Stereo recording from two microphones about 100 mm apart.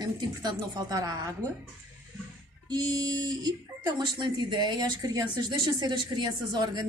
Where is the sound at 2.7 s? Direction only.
40° right (ahead or behind).